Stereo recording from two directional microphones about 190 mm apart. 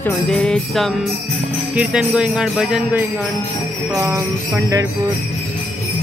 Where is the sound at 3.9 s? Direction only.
15° right (ahead or behind).